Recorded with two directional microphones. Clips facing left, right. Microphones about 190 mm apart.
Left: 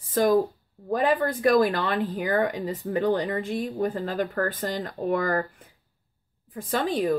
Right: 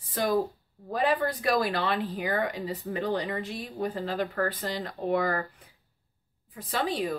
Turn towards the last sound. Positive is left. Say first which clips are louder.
# left 4 dB
turn(degrees=45)  # may be behind; listen again after turning